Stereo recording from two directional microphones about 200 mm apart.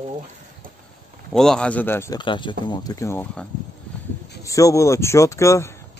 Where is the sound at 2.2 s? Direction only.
25° left (ahead or behind).